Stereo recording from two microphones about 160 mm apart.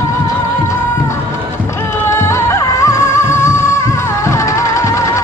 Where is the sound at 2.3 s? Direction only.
15° left (ahead or behind).